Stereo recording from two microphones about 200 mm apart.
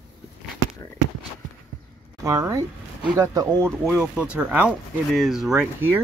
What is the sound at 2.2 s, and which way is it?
Speech, 15° right (ahead or behind).